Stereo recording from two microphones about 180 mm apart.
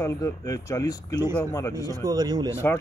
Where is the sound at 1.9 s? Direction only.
20° right (ahead or behind).